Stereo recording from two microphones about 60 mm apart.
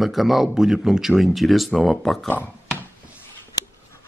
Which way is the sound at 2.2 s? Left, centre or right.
Left.